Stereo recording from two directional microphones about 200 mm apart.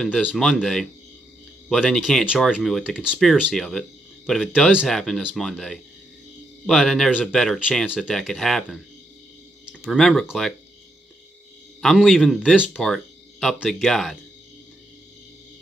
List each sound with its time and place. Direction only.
0.0 s speech: 5° left (ahead or behind)
11.8 s speech: centre (ahead or behind)